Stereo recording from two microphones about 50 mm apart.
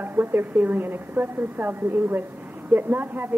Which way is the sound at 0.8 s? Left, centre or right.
Right.